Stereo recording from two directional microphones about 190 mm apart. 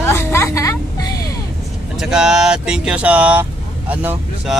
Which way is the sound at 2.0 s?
5° right (ahead or behind).